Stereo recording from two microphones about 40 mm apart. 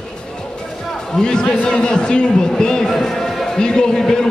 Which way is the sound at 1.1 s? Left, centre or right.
Centre.